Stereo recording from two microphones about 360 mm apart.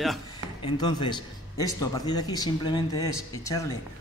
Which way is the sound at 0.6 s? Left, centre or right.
Centre.